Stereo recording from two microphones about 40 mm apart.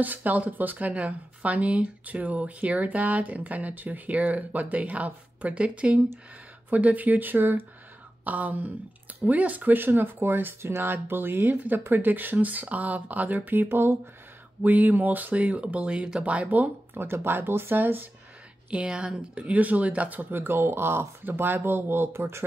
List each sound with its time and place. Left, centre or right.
0.0 s speech: right
6.7 s speech: right
8.2 s speech: right
14.6 s speech: right
15.3 s speech: right
16.4 s speech: right
16.9 s speech: right
18.7 s speech: right
19.5 s speech: right